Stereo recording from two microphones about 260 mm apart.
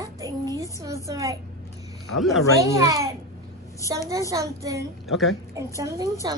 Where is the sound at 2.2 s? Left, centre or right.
Centre.